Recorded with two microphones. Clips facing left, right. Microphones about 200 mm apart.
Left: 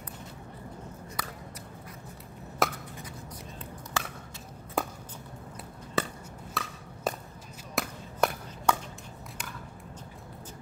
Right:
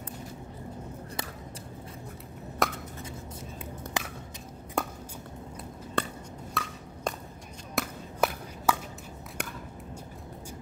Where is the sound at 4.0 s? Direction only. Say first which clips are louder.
Even; 15° right (ahead or behind).